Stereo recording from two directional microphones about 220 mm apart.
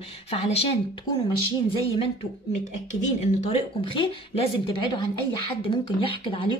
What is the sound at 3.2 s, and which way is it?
A woman's voice, 30° left (ahead or behind).